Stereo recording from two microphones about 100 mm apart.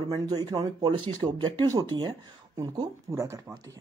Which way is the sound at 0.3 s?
40° right (ahead or behind).